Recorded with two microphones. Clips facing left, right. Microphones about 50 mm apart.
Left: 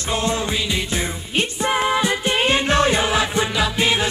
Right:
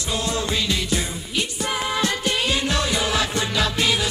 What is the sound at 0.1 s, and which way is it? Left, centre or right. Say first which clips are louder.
Music: left 4 dB; left.